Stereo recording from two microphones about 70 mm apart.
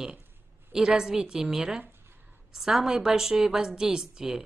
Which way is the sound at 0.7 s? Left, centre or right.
Centre.